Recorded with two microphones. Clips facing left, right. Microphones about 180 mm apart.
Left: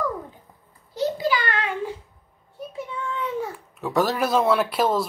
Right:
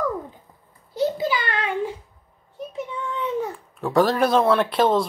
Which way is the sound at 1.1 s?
25° right (ahead or behind).